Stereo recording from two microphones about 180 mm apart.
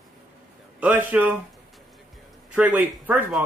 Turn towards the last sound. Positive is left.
turn(degrees=-10)  # may be behind; listen again after turning